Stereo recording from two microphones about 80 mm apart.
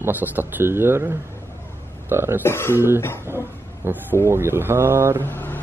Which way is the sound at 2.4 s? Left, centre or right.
Left.